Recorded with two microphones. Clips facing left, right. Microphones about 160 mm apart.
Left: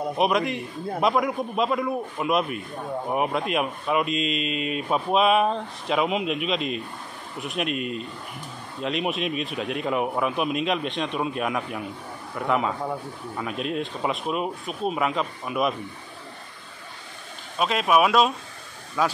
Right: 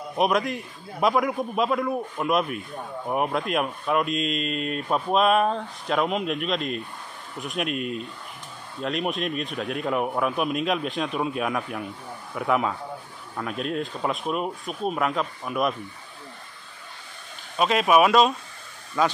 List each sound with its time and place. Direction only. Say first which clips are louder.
0.2 s speech: right 1 dB; centre (ahead or behind)
17.6 s speech: right 2 dB; centre (ahead or behind)